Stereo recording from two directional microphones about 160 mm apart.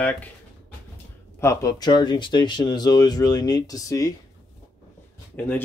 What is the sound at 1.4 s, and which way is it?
Speech, 20° left (ahead or behind).